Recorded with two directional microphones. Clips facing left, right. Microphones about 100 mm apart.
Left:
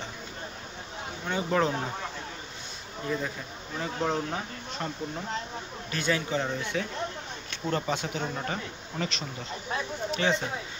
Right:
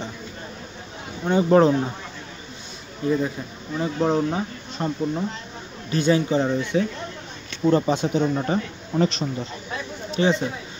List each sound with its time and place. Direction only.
1.2 s speech: 30° right (ahead or behind)
3.7 s speech: 20° right (ahead or behind)